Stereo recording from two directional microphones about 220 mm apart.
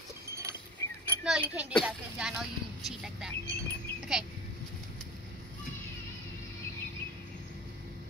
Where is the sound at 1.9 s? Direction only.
5° right (ahead or behind).